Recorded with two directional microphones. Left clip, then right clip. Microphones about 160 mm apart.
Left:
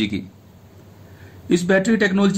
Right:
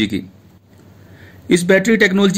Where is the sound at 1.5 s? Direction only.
25° right (ahead or behind).